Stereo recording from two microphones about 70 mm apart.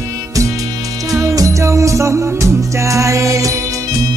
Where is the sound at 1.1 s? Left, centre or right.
Right.